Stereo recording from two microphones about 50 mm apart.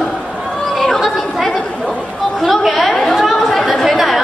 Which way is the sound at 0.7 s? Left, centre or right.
Centre.